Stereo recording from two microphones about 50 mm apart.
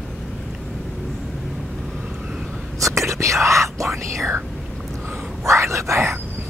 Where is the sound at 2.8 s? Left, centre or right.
Right.